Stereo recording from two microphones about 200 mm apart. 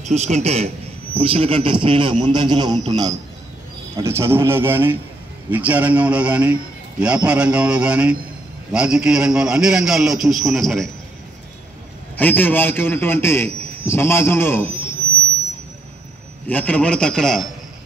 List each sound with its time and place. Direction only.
0.0 s a man's voice: 35° right (ahead or behind); by 10.9 s centre (ahead or behind)
12.2 s a man's voice: 10° left (ahead or behind)
16.4 s a man's voice: 10° left (ahead or behind)